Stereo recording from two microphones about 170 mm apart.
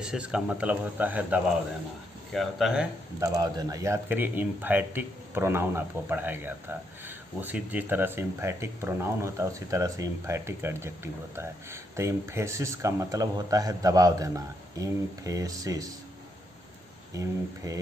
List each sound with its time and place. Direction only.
0.0 s a man's voice: 5° right (ahead or behind)
3.2 s a man's voice: 20° right (ahead or behind)
17.1 s speech: 20° right (ahead or behind)